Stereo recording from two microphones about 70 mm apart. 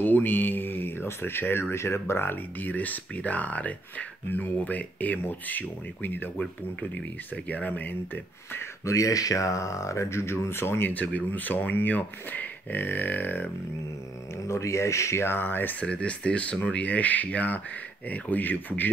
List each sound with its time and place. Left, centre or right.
0.0 s speech: left
7.4 s speech: left
8.8 s speech: left
14.5 s speech: left
15.8 s speech: centre